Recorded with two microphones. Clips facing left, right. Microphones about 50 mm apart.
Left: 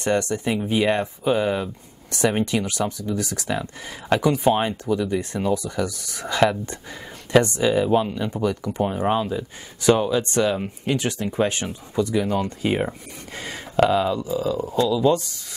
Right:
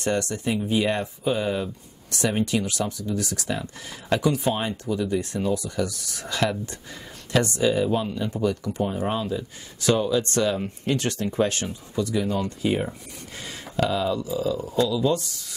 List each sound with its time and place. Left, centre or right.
0.0 s speech: left